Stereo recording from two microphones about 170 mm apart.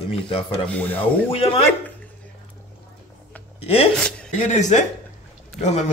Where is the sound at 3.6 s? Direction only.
35° left (ahead or behind).